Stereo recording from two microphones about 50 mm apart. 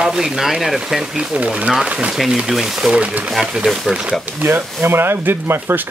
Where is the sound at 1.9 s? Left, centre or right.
Right.